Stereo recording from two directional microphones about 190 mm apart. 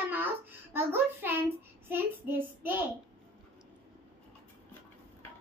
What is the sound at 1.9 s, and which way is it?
Child singing, 10° right (ahead or behind).